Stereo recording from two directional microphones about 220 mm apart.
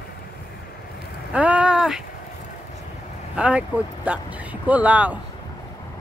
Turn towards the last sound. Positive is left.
turn(degrees=-5)  # may be behind; listen again after turning